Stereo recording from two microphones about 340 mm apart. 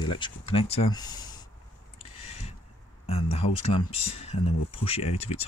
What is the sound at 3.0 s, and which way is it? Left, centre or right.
Speech, centre.